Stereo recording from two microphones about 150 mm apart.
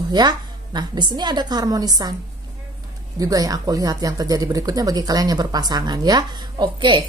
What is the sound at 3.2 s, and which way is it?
Speech, 25° right (ahead or behind).